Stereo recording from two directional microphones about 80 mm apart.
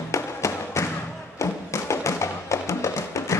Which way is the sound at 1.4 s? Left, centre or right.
Left.